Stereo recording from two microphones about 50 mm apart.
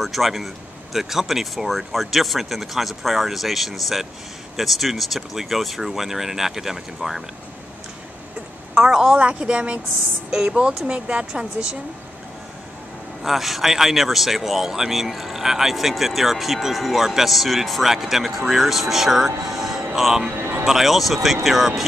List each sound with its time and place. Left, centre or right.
0.0 s speech: centre
8.7 s a woman's voice: centre
9.1 s a woman's voice: right
13.2 s speech: centre
19.5 s a sound: centre
20.0 s speech: centre
20.3 s a sound: right
20.6 s speech: centre